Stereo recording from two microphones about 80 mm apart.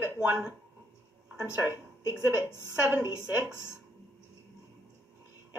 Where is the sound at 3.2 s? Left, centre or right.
Centre.